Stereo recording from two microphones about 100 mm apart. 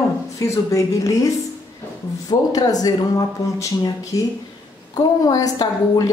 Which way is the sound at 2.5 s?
40° left (ahead or behind).